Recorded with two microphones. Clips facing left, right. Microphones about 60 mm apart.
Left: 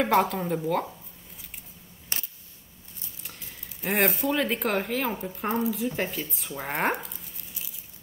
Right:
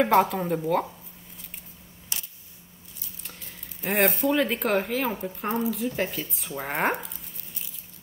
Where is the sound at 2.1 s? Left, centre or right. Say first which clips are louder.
Left 2 dB; left.